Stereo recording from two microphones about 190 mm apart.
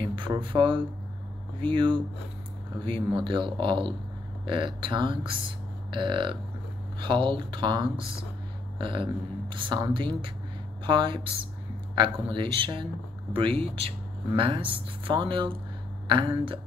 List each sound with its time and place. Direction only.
0.0 s a woman's voice: 25° right (ahead or behind)